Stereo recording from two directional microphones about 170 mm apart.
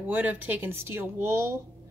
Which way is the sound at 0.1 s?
10° right (ahead or behind).